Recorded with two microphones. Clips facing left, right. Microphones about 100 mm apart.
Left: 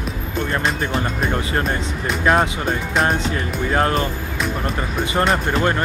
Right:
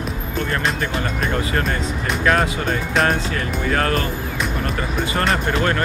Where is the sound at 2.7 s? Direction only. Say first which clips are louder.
Even; 5° left (ahead or behind).